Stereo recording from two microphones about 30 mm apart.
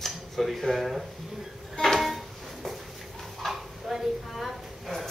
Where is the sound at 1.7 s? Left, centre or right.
Centre.